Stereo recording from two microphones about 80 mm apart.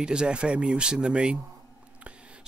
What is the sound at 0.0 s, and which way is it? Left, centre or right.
Speech, centre.